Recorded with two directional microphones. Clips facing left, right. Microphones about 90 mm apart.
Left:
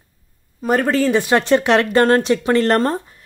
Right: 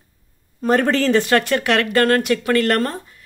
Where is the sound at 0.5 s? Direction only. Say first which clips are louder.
Even; 5° left (ahead or behind); by 3.2 s 30° left (ahead or behind).